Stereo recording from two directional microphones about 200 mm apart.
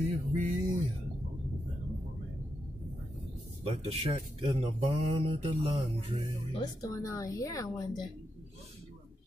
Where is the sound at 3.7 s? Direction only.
30° right (ahead or behind).